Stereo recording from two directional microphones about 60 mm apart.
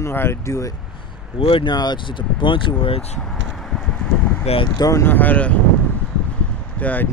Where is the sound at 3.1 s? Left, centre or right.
Centre; by 4.4 s left.